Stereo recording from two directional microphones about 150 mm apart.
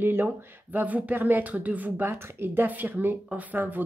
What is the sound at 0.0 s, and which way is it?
Speech, 15° right (ahead or behind).